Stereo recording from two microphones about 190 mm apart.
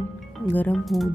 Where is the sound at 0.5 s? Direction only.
5° left (ahead or behind).